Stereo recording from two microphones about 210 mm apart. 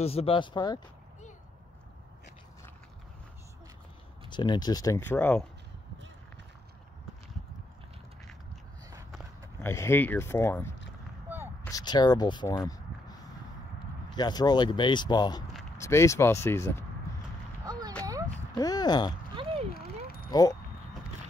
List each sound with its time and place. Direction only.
0.0 s speech: 30° left (ahead or behind)
4.3 s speech: 20° left (ahead or behind)
9.6 s speech: 10° left (ahead or behind)
14.1 s speech: 20° left (ahead or behind)
17.6 s a sound: 20° right (ahead or behind)
18.5 s speech: 20° left (ahead or behind)
19.3 s a sound: 30° right (ahead or behind)
19.7 s a sound: 45° left (ahead or behind)
20.2 s speech: 15° left (ahead or behind)